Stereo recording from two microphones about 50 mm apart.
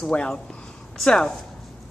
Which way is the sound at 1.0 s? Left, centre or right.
Centre.